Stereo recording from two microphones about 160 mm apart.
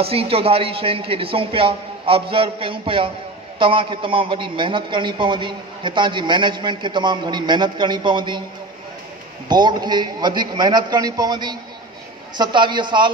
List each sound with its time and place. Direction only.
0.0 s a man's voice: 35° right (ahead or behind)
9.5 s a man's voice: 25° right (ahead or behind)